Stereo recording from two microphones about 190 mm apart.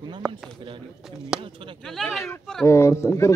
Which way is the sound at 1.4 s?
25° right (ahead or behind).